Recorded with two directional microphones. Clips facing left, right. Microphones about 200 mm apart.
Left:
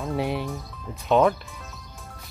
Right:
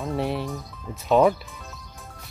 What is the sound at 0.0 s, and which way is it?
Speech, centre (ahead or behind).